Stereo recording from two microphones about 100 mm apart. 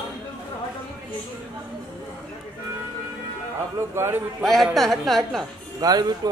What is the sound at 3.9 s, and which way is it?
Speech, 25° right (ahead or behind).